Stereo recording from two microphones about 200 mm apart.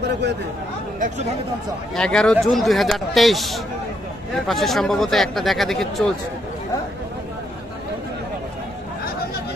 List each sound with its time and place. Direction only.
0.9 s speech: 40° right (ahead or behind)
2.0 s speech: 5° left (ahead or behind)